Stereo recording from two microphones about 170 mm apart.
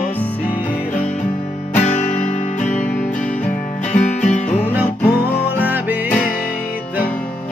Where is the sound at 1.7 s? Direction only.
40° left (ahead or behind).